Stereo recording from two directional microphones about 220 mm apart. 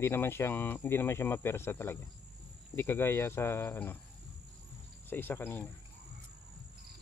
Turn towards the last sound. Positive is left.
turn(degrees=10)  # may be behind; listen again after turning